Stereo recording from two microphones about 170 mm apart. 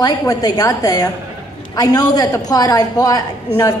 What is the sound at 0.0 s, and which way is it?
A woman's voice, 20° left (ahead or behind).